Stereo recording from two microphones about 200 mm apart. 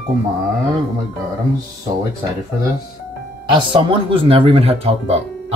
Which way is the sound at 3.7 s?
25° right (ahead or behind).